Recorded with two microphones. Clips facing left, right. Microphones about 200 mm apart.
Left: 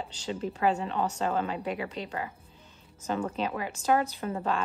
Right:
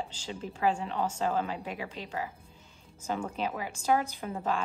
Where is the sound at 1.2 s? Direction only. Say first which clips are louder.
Left 1 dB; 55° left (ahead or behind).